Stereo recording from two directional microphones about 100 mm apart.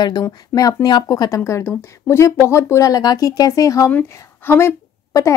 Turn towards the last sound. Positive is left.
turn(degrees=30)  # may be behind; listen again after turning